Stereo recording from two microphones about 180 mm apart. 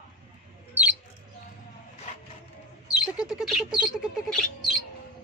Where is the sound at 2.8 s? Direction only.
5° right (ahead or behind).